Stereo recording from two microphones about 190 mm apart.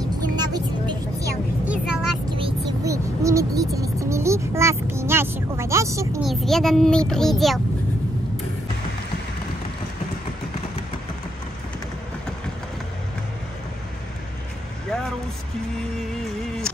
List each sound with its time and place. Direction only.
0.4 s vehicle: 20° right (ahead or behind)
1.7 s vehicle: 5° right (ahead or behind)
2.8 s vehicle: 15° right (ahead or behind)
6.2 s a child's voice: centre (ahead or behind)